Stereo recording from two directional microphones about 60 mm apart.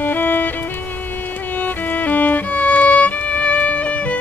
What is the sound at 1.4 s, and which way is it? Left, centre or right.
Violin, left.